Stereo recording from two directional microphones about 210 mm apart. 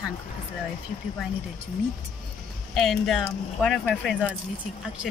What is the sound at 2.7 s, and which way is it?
Speech, centre (ahead or behind).